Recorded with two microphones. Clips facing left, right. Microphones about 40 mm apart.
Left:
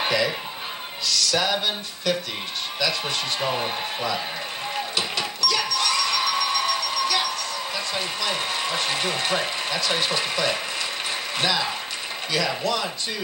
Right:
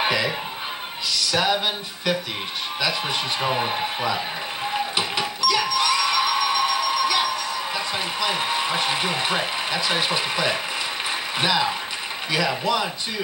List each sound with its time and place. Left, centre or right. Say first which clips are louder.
0.0 s speech: right 1 dB; centre
4.9 s a sound: right 2 dB; centre
11.3 s speech: right 3 dB; centre